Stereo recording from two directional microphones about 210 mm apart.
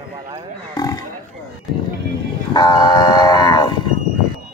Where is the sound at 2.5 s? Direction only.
20° left (ahead or behind).